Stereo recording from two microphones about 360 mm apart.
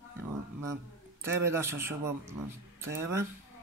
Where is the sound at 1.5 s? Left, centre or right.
Centre.